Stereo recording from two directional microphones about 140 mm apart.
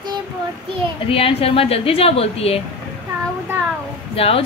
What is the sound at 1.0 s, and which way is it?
Speech, 40° left (ahead or behind).